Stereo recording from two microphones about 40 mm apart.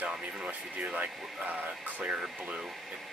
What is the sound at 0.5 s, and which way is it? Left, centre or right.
Speech, right.